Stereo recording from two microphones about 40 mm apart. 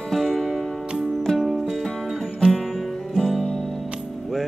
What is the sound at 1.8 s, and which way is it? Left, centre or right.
Music, centre.